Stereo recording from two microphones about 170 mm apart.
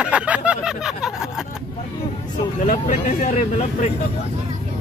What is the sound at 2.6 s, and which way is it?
Speech, 55° left (ahead or behind).